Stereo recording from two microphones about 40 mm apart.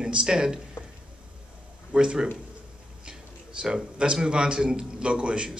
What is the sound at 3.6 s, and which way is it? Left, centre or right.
Speech, right.